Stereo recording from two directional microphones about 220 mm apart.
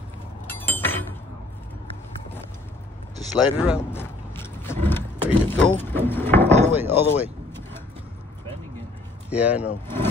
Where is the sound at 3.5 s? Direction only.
5° right (ahead or behind).